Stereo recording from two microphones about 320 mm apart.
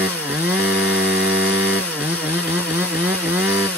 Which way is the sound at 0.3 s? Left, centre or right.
Centre.